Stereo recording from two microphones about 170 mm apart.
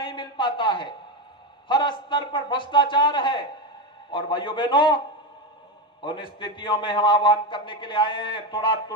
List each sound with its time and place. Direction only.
0.0 s a sound: 25° left (ahead or behind)
4.1 s a man's voice: 30° left (ahead or behind)
6.0 s a man's voice: 30° left (ahead or behind)